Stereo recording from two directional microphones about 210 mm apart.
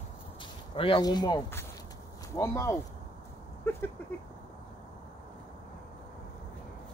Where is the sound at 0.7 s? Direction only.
25° left (ahead or behind).